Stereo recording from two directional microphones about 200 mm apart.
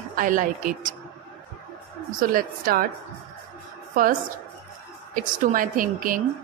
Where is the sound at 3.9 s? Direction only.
45° right (ahead or behind).